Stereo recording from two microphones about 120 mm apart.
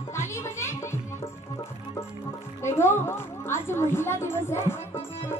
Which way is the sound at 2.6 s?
20° left (ahead or behind).